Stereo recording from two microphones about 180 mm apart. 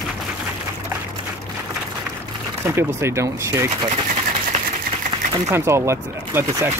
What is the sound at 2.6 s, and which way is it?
Speech, 15° right (ahead or behind).